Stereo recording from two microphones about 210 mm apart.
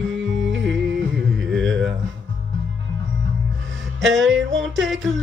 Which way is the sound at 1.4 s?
65° right (ahead or behind).